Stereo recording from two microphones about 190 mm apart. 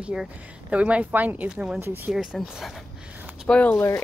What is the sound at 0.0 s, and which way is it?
A woman's voice, 5° right (ahead or behind).